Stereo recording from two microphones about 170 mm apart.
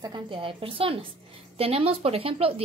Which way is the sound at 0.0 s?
25° right (ahead or behind).